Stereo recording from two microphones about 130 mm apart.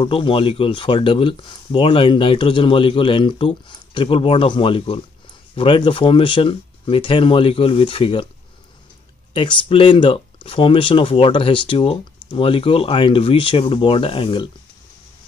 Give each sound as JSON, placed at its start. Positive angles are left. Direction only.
{"t": 0.0, "sound": "speech", "side_deg": 40}
{"t": 9.3, "sound": "speech", "side_deg": 40}